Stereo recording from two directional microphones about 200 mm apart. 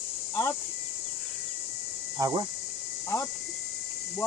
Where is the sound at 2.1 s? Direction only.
20° right (ahead or behind).